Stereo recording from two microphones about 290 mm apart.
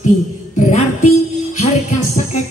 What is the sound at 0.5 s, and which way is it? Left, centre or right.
Music, left.